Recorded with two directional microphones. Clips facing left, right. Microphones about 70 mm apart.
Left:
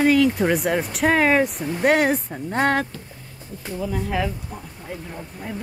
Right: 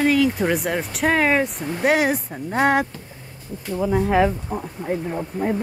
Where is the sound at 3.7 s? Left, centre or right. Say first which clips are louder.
Right 7 dB; right.